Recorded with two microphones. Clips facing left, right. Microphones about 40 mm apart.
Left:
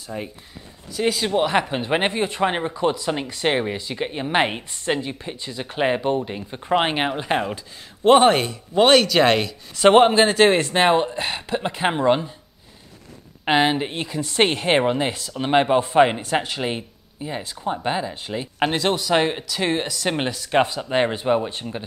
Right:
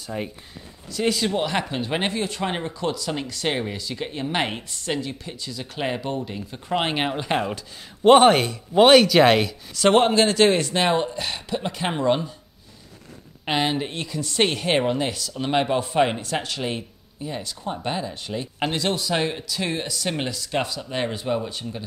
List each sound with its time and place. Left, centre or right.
0.0 s speech: centre
0.9 s speech: centre
9.8 s speech: left
13.5 s speech: left